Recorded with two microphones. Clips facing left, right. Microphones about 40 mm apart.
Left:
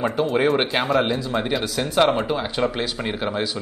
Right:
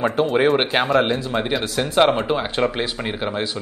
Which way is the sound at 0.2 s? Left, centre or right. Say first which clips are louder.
Right 3 dB; right.